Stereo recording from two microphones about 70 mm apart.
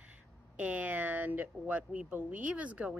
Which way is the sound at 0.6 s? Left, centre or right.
Right.